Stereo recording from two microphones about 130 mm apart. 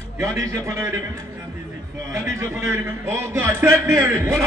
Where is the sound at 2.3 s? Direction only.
20° right (ahead or behind).